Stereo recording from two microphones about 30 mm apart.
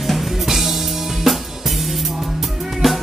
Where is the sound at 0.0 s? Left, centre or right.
Centre.